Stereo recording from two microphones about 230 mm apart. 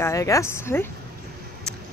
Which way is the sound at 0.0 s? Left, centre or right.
Centre.